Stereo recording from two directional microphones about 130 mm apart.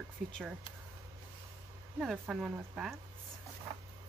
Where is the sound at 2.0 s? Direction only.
5° right (ahead or behind).